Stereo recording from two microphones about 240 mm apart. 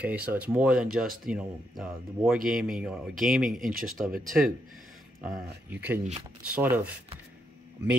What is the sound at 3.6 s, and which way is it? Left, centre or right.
Speech, right.